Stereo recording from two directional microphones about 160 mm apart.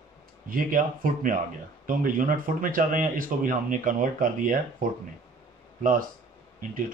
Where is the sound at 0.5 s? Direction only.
55° right (ahead or behind).